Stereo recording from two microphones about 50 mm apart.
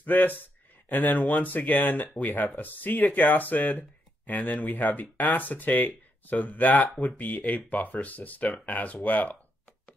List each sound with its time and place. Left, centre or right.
0.0 s speech: left